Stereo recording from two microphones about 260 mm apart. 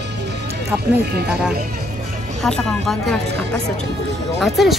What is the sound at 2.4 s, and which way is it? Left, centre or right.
Speech, centre.